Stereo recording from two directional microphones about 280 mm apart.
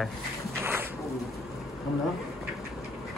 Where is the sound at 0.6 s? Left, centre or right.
Centre.